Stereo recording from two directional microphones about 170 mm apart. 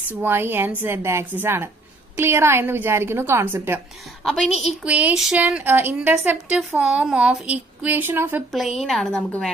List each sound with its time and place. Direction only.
0.1 s a woman's voice: 10° right (ahead or behind)
4.2 s a woman's voice: centre (ahead or behind)
8.5 s a woman's voice: centre (ahead or behind)